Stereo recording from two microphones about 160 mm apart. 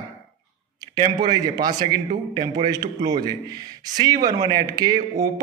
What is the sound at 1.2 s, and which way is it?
A man's voice, 25° right (ahead or behind).